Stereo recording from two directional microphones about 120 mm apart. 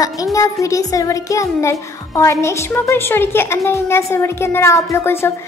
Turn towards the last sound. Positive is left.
turn(degrees=25)  # may be behind; listen again after turning